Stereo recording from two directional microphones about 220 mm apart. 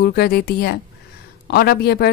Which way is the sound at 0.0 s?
45° left (ahead or behind).